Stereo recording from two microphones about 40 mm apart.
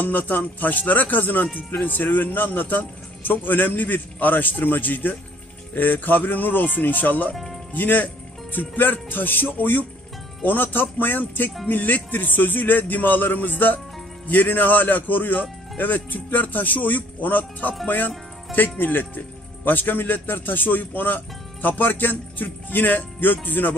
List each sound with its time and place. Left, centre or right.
0.0 s speech: left